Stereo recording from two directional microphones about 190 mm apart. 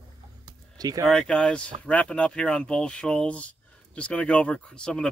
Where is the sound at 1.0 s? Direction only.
5° left (ahead or behind).